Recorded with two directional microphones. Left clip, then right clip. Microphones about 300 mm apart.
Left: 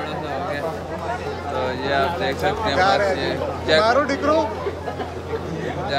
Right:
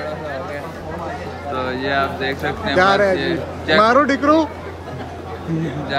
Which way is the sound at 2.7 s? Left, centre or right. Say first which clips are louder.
Right 5 dB; centre.